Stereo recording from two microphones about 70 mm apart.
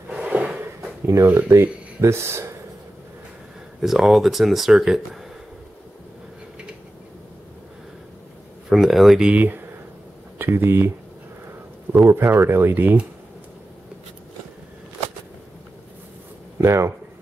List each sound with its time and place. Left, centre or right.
0.2 s drawer open or close: centre
1.0 s speech: right
3.8 s speech: centre
8.6 s speech: centre
9.3 s speech: right
11.9 s speech: right
16.6 s speech: right